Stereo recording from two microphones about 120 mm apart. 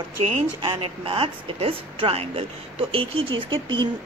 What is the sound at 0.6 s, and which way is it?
A woman's voice, 50° right (ahead or behind).